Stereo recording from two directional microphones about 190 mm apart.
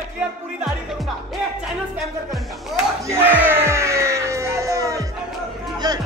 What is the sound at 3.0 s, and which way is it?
Music, 10° right (ahead or behind).